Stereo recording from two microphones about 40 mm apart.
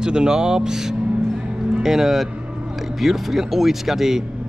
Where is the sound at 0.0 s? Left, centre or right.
Centre.